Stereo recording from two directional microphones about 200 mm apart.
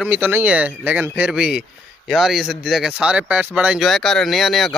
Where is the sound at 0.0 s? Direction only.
10° right (ahead or behind).